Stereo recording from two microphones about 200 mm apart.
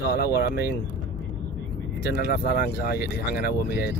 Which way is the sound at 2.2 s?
50° left (ahead or behind).